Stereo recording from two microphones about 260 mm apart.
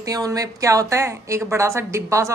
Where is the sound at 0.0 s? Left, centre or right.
Centre.